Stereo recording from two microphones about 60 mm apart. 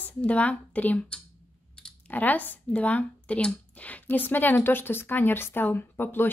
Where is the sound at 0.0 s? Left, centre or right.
Left.